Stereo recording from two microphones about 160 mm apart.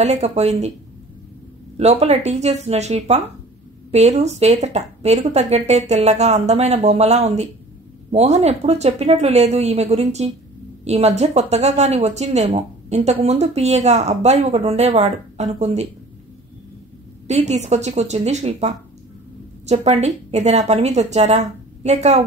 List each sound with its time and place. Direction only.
0.0 s speech: 45° right (ahead or behind)
1.8 s speech: 40° right (ahead or behind)
17.3 s speech: 45° right (ahead or behind)